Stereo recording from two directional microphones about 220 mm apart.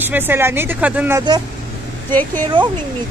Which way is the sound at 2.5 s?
20° right (ahead or behind).